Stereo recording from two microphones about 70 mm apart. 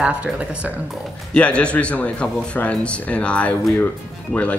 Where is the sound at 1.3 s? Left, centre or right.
Centre.